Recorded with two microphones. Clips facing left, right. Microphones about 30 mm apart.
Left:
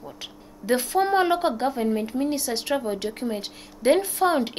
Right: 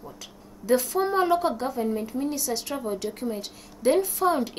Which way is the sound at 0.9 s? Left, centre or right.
Left.